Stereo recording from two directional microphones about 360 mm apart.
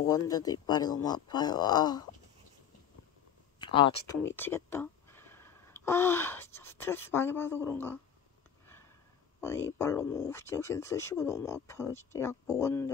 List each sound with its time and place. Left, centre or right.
0.0 s speech: centre
3.5 s speech: centre
9.4 s speech: centre